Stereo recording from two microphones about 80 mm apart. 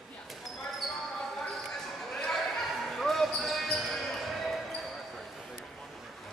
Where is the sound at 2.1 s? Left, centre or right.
Centre.